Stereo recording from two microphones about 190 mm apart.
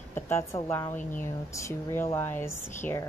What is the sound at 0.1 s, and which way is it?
A woman's voice, 15° left (ahead or behind).